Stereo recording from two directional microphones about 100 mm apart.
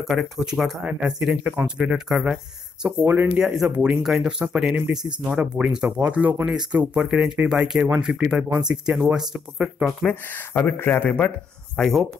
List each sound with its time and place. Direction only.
0.1 s speech: centre (ahead or behind)
10.0 s speech: 20° left (ahead or behind); by 12.1 s 5° left (ahead or behind)